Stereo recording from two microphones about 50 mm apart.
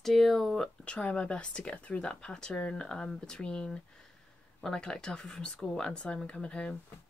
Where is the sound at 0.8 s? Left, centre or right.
Left.